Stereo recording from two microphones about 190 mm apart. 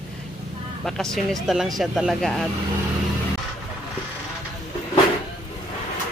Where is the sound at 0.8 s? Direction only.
Centre (ahead or behind).